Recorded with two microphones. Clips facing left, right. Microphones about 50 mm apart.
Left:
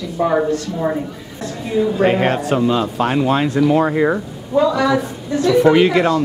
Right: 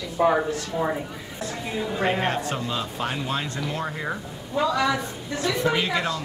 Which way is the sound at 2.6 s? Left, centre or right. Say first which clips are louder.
Left 12 dB; left.